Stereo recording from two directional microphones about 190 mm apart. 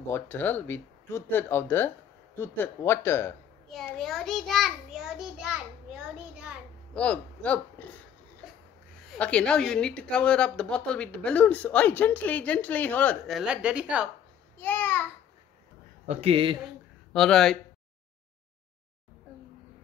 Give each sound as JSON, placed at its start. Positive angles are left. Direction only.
{"t": 0.1, "sound": "speech", "side_deg": 10}
{"t": 3.7, "sound": "a child's voice", "side_deg": 0}
{"t": 6.9, "sound": "speech", "side_deg": 5}
{"t": 9.1, "sound": "a woman's voice", "side_deg": 5}
{"t": 14.6, "sound": "babbling", "side_deg": 10}
{"t": 16.1, "sound": "a man's voice", "side_deg": -35}
{"t": 17.1, "sound": "a woman's voice", "side_deg": 0}